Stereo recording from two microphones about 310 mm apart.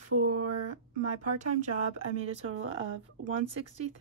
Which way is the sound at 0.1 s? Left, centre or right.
Right.